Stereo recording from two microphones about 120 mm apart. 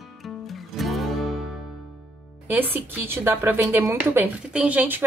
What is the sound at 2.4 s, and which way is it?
Speech, 15° right (ahead or behind).